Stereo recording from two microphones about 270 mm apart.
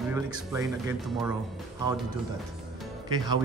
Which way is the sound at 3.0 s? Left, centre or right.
Centre.